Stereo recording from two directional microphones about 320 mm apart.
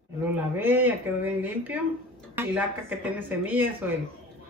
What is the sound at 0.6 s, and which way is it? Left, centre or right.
Speech, centre.